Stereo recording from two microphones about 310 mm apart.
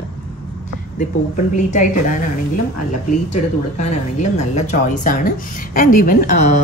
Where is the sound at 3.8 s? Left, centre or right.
Left.